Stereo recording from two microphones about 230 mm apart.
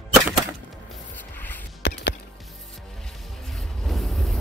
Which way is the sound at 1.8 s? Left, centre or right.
Left.